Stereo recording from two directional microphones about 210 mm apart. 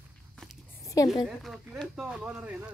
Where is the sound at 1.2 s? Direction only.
Centre (ahead or behind).